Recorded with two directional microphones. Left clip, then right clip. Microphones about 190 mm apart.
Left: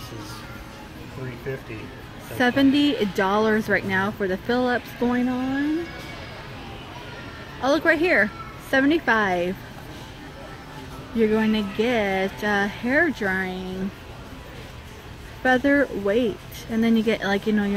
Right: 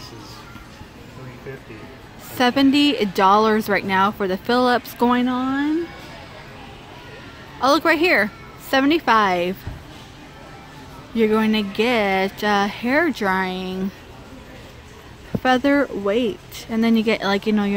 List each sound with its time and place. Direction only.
2.3 s speech: 15° right (ahead or behind); by 5.4 s 35° right (ahead or behind)
7.6 s speech: 20° right (ahead or behind)
11.1 s speech: 20° right (ahead or behind)
15.4 s speech: 15° right (ahead or behind)